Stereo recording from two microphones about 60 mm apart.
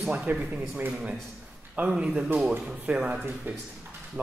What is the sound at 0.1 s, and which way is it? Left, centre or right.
Speech, right.